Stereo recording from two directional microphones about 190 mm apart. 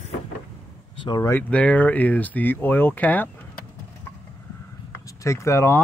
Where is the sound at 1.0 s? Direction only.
20° left (ahead or behind).